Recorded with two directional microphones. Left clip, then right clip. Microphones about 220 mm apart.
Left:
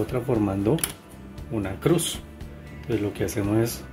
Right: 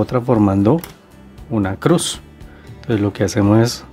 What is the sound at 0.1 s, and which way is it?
Speech, 45° right (ahead or behind).